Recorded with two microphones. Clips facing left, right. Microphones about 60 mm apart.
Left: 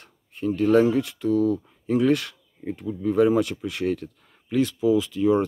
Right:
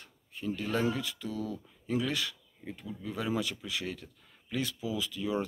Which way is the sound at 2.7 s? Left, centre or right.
Left.